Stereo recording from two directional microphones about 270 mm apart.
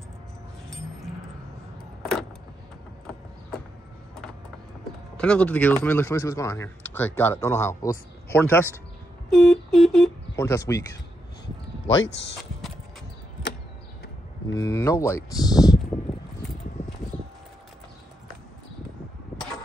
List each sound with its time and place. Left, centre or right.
5.1 s speech: centre
9.3 s a sound: centre
10.3 s speech: centre
11.9 s speech: left
14.5 s speech: centre